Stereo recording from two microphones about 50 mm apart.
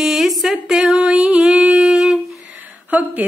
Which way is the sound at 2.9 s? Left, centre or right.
Right.